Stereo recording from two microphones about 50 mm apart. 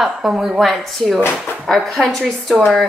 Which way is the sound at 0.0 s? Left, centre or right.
Centre.